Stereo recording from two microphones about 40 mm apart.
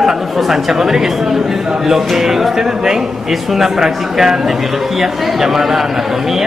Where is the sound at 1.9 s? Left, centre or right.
Centre.